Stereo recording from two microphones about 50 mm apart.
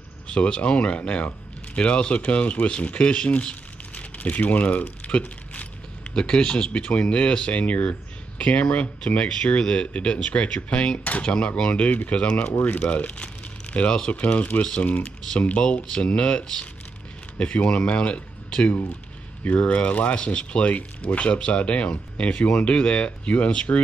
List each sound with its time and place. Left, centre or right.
0.3 s speech: left
6.1 s speech: centre
11.1 s speech: left
11.3 s speech: centre
14.2 s speech: left